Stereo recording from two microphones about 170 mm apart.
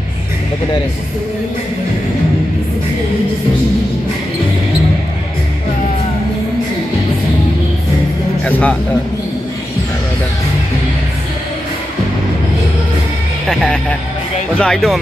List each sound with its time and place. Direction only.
8.5 s speech: 10° left (ahead or behind)
13.5 s speech: 5° left (ahead or behind)